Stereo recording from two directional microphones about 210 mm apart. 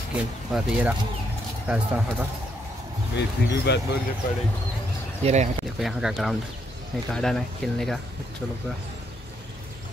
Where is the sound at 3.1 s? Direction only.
55° left (ahead or behind).